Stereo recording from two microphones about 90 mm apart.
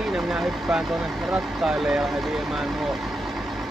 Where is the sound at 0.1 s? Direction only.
5° right (ahead or behind).